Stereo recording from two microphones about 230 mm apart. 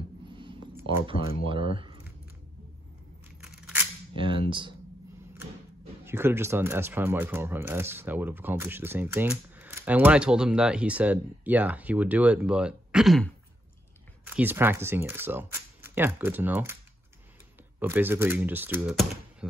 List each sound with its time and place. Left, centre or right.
0.8 s speech: right
3.3 s tearing: centre
4.2 s speech: right
6.0 s speech: centre
17.7 s speech: centre